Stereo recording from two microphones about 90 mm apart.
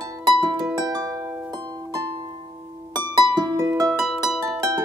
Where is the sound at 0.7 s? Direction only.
50° right (ahead or behind).